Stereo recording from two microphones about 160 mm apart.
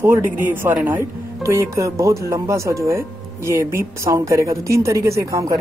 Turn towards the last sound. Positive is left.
turn(degrees=-20)  # may be behind; listen again after turning